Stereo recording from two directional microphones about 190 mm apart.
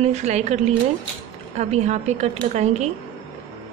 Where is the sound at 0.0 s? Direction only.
35° right (ahead or behind).